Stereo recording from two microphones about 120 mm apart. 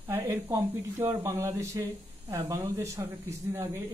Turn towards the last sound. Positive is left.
turn(degrees=-25)  # may be behind; listen again after turning